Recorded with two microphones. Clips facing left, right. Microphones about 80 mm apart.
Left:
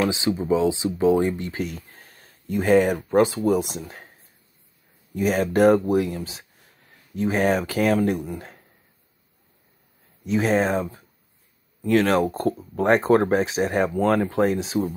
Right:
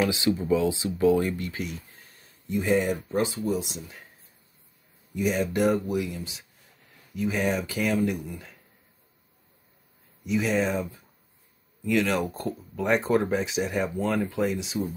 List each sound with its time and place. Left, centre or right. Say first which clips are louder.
0.0 s speech: left 2 dB; left
5.1 s speech: left 4 dB; left
10.2 s speech: left 4 dB; left